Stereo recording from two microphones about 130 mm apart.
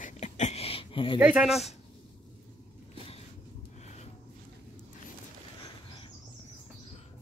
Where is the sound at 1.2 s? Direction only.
5° right (ahead or behind).